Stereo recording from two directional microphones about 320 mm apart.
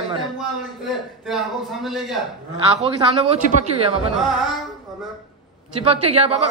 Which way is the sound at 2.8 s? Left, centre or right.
Centre.